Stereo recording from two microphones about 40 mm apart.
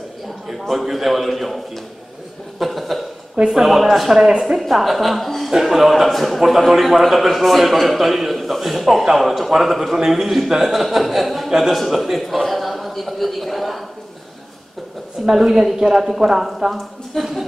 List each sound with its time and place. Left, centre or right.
0.5 s a man's voice: centre
2.6 s chuckle: centre
3.4 s a man's voice: centre
9.9 s speech: centre
10.2 s a man's voice: centre
15.2 s a man's voice: centre